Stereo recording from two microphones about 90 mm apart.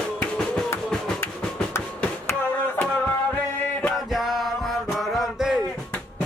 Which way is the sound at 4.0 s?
Centre (ahead or behind).